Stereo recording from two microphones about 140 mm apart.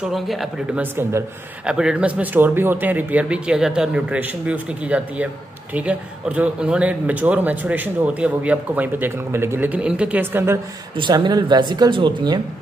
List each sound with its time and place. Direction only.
0.0 s speech: centre (ahead or behind); by 10.6 s 15° right (ahead or behind)
11.0 s speech: 35° right (ahead or behind)